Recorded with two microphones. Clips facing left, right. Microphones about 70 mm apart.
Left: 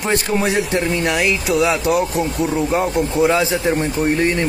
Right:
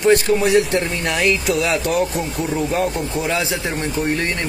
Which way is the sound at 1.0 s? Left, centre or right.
Centre.